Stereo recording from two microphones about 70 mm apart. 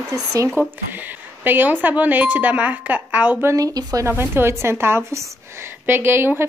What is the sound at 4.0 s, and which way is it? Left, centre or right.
A woman's voice, right.